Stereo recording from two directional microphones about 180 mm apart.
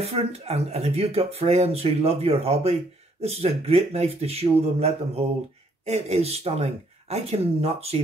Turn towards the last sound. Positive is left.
turn(degrees=-35)  # may be behind; listen again after turning